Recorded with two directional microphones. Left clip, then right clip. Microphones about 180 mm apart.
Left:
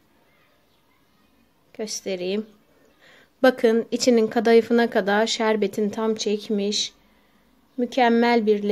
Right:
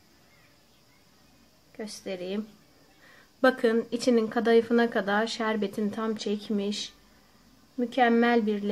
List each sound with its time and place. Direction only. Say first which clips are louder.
1.8 s speech: left 8 dB; 45° left (ahead or behind)